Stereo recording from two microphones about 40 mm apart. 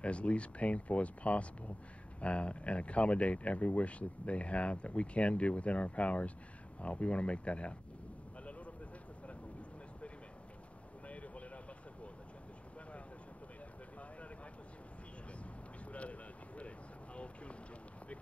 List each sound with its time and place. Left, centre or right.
0.0 s speech: left
8.5 s a sound: left
9.3 s vehicle: left
15.9 s boat: left